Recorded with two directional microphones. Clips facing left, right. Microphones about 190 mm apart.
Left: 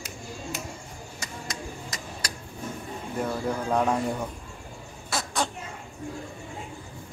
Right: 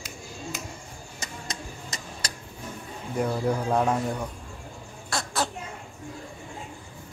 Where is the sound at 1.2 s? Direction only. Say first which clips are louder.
Left 1 dB; 25° right (ahead or behind).